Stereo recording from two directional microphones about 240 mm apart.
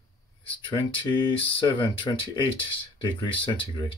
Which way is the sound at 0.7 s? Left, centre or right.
Centre.